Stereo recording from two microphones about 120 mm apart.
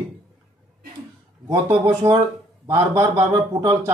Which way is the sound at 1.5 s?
25° right (ahead or behind).